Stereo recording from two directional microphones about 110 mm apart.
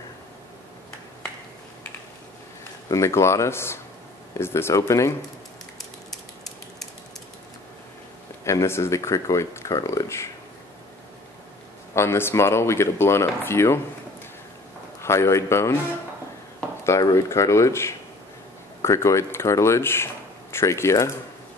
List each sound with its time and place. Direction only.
2.9 s speech: 25° left (ahead or behind)
8.5 s speech: 25° left (ahead or behind)
11.9 s speech: 25° left (ahead or behind)
15.0 s speech: 25° left (ahead or behind)
17.1 s speech: 25° left (ahead or behind)